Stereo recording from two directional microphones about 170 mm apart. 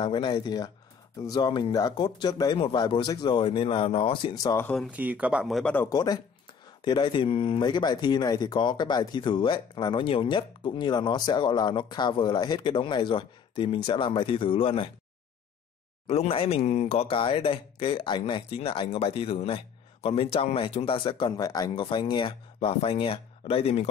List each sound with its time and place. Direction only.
0.0 s speech: 25° left (ahead or behind)
4.9 s speech: 10° right (ahead or behind)
5.9 s speech: 20° left (ahead or behind)
16.1 s speech: 35° left (ahead or behind)